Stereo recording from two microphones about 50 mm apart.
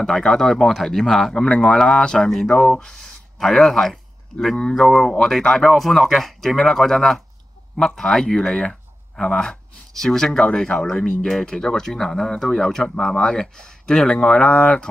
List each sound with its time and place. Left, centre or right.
0.0 s speech: centre
3.3 s speech: centre
4.6 s speech: centre
5.6 s speech: centre
14.5 s speech: left